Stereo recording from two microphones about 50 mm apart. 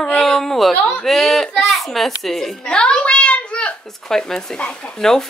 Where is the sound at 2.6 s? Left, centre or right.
Left.